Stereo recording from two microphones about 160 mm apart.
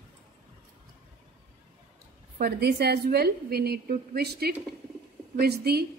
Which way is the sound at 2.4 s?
85° right.